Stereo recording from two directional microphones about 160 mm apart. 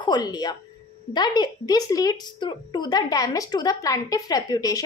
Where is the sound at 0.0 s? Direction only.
25° left (ahead or behind).